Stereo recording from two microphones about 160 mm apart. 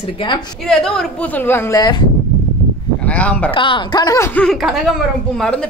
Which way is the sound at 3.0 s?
10° left (ahead or behind).